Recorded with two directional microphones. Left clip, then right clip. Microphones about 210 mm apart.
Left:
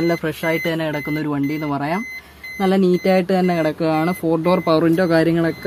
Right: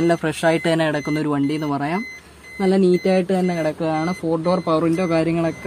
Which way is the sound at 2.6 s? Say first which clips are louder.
Even; 10° left (ahead or behind).